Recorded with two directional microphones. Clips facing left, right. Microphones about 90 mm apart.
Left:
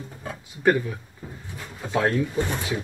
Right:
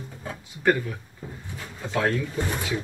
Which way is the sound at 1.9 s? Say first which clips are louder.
Left 3 dB; 15° left (ahead or behind).